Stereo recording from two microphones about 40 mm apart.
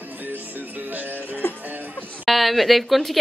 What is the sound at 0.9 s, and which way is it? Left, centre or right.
Music, right.